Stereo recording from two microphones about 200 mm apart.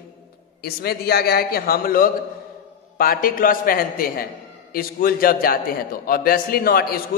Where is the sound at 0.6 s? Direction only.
50° left (ahead or behind).